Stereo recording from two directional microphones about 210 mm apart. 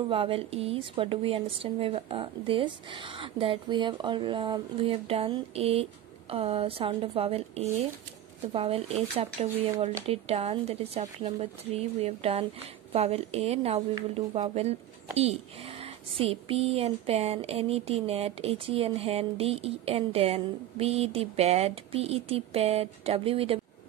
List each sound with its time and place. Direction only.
0.1 s speech: 25° right (ahead or behind)